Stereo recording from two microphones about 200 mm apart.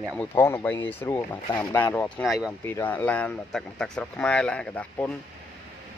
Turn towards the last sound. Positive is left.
turn(degrees=5)  # may be behind; listen again after turning